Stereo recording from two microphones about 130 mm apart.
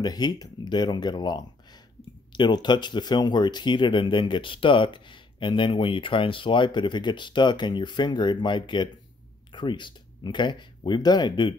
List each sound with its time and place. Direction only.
0.0 s speech: 30° left (ahead or behind)